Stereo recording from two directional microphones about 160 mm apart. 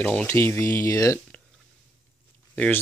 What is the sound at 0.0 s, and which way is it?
Speech, 10° left (ahead or behind).